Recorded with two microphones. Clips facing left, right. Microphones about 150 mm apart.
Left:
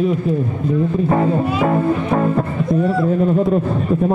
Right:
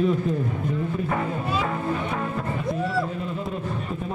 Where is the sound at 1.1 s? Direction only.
45° left (ahead or behind).